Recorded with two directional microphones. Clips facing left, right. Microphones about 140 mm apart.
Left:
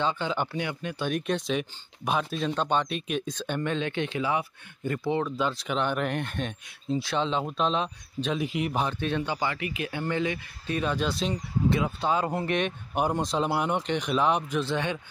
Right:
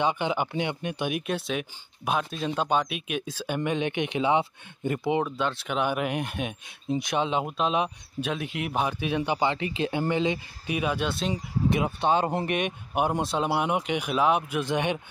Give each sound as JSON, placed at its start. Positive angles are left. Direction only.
{"t": 0.0, "sound": "speech", "side_deg": -15}
{"t": 1.1, "sound": "speech", "side_deg": -5}
{"t": 5.4, "sound": "speech", "side_deg": 0}
{"t": 10.8, "sound": "speech", "side_deg": -5}
{"t": 11.7, "sound": "speech", "side_deg": -20}
{"t": 12.5, "sound": "speech", "side_deg": -10}